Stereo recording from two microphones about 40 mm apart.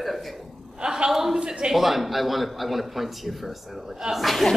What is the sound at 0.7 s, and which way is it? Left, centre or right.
A woman's voice, centre.